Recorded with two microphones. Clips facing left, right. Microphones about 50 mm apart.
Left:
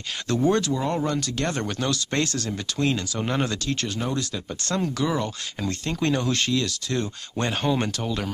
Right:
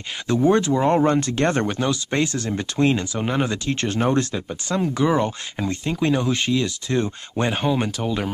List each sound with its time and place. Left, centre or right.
0.3 s speech: centre
1.8 s speech: centre; by 4.4 s right
4.5 s speech: centre
4.9 s speech: right